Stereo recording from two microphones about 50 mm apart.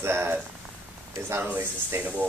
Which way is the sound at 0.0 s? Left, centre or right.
Right.